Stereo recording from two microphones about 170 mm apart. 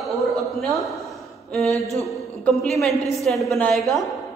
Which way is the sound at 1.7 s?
20° right (ahead or behind).